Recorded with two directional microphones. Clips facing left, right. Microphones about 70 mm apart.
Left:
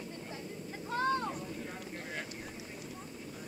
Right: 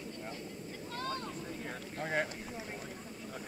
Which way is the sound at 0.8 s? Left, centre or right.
Left.